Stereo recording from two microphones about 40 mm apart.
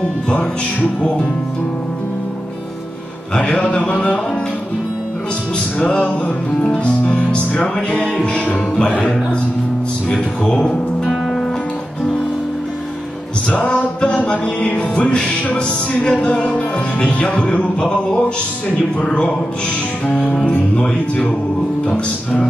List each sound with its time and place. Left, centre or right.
0.3 s music: left
3.3 s music: left
5.8 s music: left
10.4 s music: left
13.7 s music: left
16.3 s music: left
20.1 s music: left